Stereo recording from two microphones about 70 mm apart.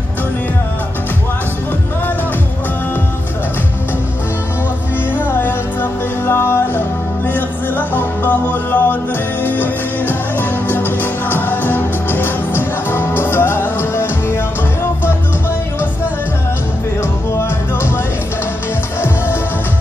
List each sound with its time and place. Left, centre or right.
5.1 s music: left